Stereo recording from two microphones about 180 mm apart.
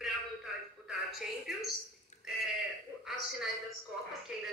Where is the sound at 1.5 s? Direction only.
5° right (ahead or behind).